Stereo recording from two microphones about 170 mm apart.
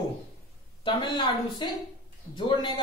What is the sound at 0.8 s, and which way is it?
A man's voice, 30° left (ahead or behind).